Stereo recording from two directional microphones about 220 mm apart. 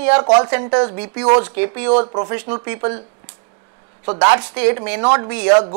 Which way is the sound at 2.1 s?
20° right (ahead or behind).